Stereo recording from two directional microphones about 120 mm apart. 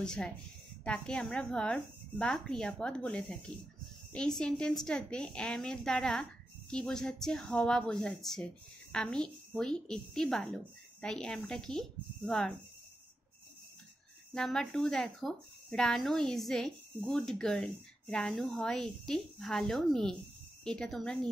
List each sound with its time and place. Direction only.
0.0 s speech: 5° left (ahead or behind)
14.3 s speech: 5° left (ahead or behind)